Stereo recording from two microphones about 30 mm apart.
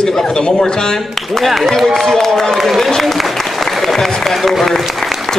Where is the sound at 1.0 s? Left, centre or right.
Centre.